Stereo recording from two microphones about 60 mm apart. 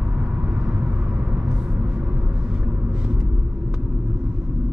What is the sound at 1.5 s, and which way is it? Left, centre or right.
Vehicle, centre.